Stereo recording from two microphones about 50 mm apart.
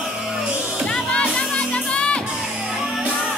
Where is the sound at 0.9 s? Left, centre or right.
Centre.